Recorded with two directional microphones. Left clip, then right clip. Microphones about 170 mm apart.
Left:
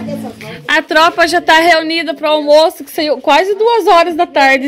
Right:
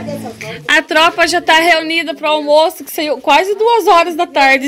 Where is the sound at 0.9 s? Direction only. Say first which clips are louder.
Left 4 dB; 30° left (ahead or behind).